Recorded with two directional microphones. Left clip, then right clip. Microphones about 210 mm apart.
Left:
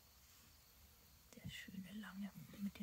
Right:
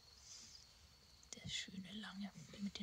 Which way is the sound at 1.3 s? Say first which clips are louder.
Right 7 dB; 25° right (ahead or behind).